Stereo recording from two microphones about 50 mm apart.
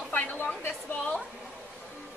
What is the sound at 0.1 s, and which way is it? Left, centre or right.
Speech, left.